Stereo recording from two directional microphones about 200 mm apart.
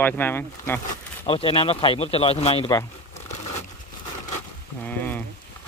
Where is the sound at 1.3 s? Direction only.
25° left (ahead or behind).